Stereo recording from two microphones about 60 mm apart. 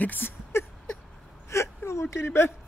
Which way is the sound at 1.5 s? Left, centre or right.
Left.